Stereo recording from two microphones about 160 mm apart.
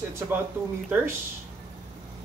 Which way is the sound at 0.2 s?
10° right (ahead or behind).